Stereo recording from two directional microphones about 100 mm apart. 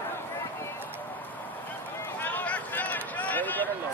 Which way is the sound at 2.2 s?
20° left (ahead or behind).